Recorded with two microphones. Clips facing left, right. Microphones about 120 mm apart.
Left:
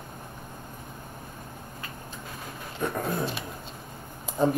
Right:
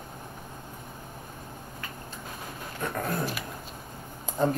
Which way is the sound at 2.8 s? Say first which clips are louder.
Left 2 dB; 25° left (ahead or behind).